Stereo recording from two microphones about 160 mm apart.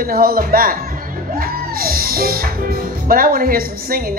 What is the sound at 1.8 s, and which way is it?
Music, 65° right (ahead or behind).